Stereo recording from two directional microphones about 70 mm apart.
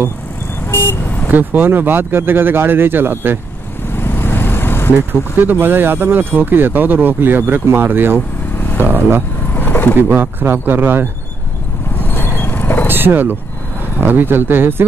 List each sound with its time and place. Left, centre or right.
0.7 s vehicle: left
1.3 s speech: right
3.9 s vehicle: left
5.4 s speech: right
9.5 s vehicle: left
9.9 s speech: right
12.0 s vehicle: left
12.8 s speech: right